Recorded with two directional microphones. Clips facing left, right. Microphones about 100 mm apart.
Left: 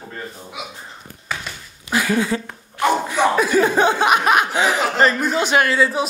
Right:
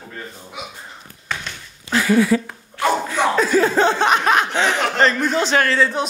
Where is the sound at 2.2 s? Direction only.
25° left (ahead or behind).